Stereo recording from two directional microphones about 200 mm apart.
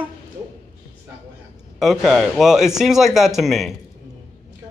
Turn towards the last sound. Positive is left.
turn(degrees=0)  # may be behind; listen again after turning